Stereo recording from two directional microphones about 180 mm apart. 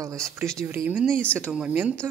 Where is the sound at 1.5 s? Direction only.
10° right (ahead or behind).